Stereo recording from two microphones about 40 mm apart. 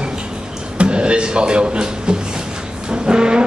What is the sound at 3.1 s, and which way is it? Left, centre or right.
Music, right.